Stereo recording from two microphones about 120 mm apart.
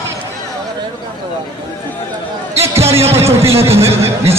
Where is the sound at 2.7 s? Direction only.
20° right (ahead or behind).